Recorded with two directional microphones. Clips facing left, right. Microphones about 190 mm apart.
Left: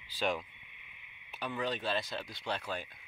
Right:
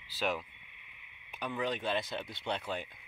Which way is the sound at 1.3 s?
15° right (ahead or behind).